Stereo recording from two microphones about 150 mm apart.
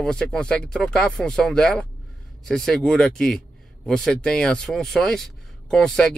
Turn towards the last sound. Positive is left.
turn(degrees=5)  # may be behind; listen again after turning